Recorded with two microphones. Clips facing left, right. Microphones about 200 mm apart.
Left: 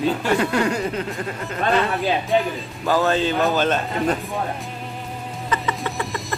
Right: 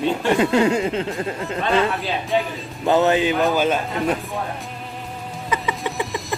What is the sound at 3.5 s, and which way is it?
Speech, 10° right (ahead or behind).